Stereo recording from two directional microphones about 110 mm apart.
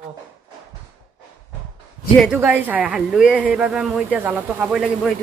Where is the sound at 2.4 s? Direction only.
15° right (ahead or behind).